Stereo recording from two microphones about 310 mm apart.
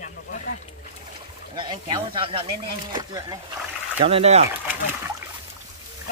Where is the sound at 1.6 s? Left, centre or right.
Centre.